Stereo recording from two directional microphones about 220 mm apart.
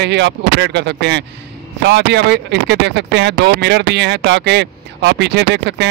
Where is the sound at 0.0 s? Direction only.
50° right (ahead or behind).